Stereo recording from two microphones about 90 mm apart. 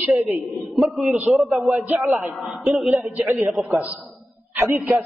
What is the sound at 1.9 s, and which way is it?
Speech, 30° right (ahead or behind).